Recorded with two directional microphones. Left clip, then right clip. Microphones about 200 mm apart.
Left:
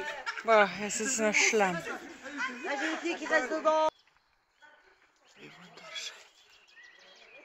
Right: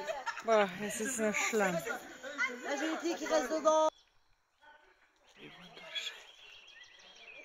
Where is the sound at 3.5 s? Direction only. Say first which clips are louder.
Right 1 dB; 80° right.